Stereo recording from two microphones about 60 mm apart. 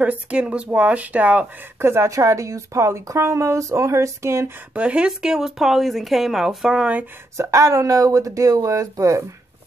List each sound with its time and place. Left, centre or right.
0.0 s speech: right
1.8 s speech: right
2.0 s speech: right
4.7 s speech: centre
7.3 s speech: right